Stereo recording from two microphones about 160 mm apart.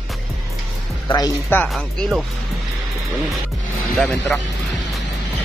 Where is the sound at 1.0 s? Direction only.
25° left (ahead or behind).